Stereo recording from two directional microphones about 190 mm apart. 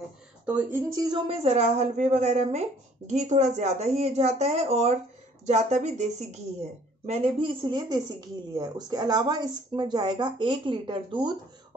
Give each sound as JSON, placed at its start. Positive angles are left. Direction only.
{"t": 0.5, "sound": "speech", "side_deg": -5}
{"t": 0.9, "sound": "speech", "side_deg": -20}